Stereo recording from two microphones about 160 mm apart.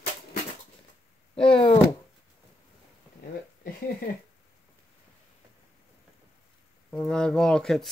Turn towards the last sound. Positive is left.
turn(degrees=5)  # may be behind; listen again after turning